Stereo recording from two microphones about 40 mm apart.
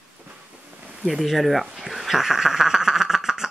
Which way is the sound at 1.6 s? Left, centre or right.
Centre.